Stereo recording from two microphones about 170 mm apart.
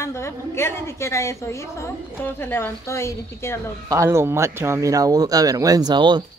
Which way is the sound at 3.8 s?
15° right (ahead or behind).